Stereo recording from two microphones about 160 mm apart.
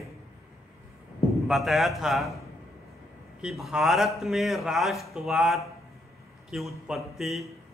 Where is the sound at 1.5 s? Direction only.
Centre (ahead or behind).